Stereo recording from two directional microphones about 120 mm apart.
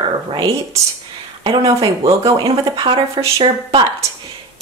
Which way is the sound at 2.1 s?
30° right (ahead or behind).